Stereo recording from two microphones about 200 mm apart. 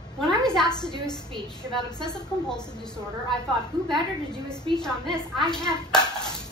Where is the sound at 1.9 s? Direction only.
20° left (ahead or behind).